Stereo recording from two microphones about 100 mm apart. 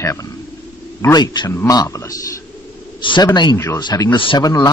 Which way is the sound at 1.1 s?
45° left (ahead or behind).